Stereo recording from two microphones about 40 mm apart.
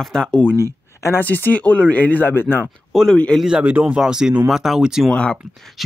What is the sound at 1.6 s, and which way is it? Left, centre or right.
Speech, left.